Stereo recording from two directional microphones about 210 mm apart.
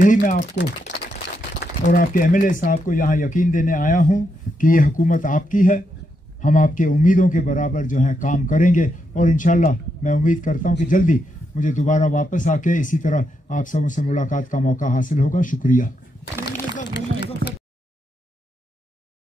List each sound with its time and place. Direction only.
0.0 s a man's voice: 40° left (ahead or behind)
1.6 s a man's voice: 40° left (ahead or behind)
16.4 s a sound: 50° left (ahead or behind)